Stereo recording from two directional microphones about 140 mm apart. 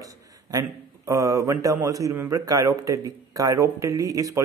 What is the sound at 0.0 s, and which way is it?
A man's voice, 25° right (ahead or behind).